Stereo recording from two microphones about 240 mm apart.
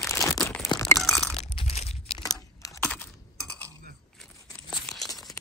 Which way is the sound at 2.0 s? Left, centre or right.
Centre.